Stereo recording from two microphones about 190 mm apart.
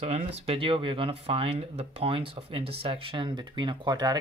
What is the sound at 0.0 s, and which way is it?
Speech, 35° right (ahead or behind).